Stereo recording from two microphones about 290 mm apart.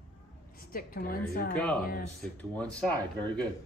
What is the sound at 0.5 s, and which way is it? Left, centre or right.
A woman's voice, left.